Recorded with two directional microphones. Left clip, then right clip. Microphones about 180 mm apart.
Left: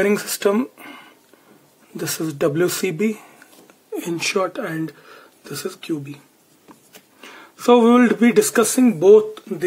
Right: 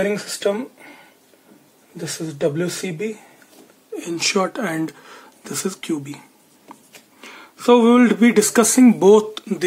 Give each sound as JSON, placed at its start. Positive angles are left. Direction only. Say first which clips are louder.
{"t": 0.0, "sound": "speech", "louder": "left 2 dB", "side_deg": 60}
{"t": 2.0, "sound": "speech", "louder": "left 2 dB", "side_deg": 55}
{"t": 4.2, "sound": "speech", "louder": "right 2 dB", "side_deg": 0}
{"t": 4.5, "sound": "speech", "louder": "right 2 dB", "side_deg": -10}
{"t": 7.2, "sound": "speech", "louder": "even", "side_deg": 0}
{"t": 8.8, "sound": "speech", "louder": "left 1 dB", "side_deg": -20}